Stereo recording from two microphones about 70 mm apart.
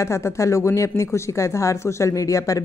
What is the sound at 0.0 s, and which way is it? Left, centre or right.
A woman's voice, left.